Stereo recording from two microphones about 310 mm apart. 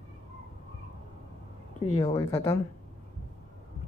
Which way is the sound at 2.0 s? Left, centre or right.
Centre.